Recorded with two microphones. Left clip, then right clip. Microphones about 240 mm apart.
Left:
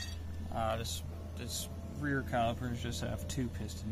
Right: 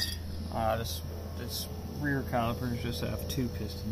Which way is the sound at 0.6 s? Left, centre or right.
Centre.